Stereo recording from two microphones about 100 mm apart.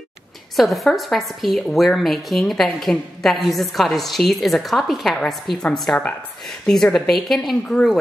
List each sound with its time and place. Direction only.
0.6 s a woman's voice: centre (ahead or behind)